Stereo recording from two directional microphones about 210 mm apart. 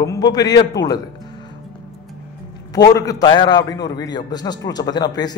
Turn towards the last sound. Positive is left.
turn(degrees=20)  # may be behind; listen again after turning